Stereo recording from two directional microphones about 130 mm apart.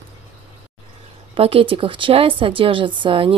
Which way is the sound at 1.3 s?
45° right (ahead or behind).